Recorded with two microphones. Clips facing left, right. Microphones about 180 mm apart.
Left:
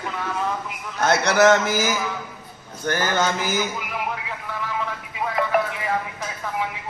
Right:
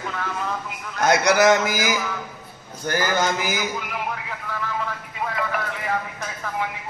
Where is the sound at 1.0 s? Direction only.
10° right (ahead or behind).